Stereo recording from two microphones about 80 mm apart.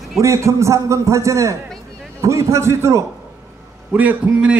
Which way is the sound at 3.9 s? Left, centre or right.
Centre.